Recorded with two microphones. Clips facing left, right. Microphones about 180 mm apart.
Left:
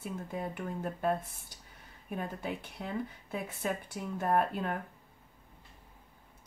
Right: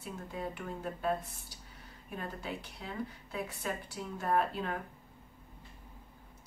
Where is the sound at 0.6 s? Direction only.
50° left (ahead or behind).